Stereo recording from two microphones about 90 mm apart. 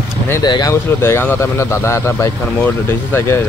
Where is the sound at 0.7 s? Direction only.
30° left (ahead or behind).